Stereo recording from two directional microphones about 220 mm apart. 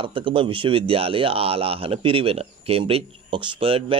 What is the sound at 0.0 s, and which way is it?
Speech, 25° right (ahead or behind).